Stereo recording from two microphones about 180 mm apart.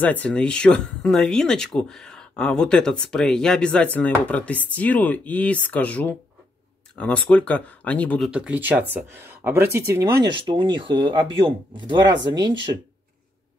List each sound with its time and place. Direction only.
0.0 s speech: 10° left (ahead or behind)
8.3 s speech: 5° right (ahead or behind)
10.3 s speech: 25° right (ahead or behind)